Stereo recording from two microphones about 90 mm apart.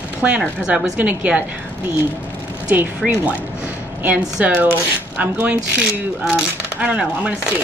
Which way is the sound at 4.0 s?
15° right (ahead or behind).